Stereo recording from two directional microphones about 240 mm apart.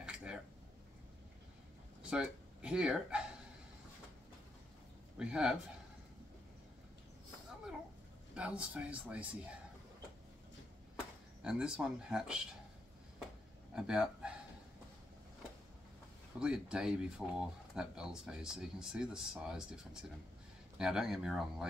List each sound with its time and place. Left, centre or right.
0.0 s a sound: centre
2.0 s speech: centre
5.1 s speech: centre
8.4 s speech: centre
11.4 s speech: centre
13.7 s speech: centre
16.3 s speech: centre